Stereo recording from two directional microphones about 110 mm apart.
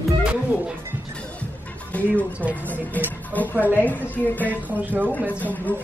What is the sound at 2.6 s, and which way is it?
Speech, 15° left (ahead or behind).